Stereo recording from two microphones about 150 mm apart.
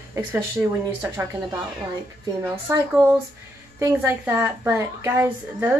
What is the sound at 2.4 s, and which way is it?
Speech, 20° right (ahead or behind).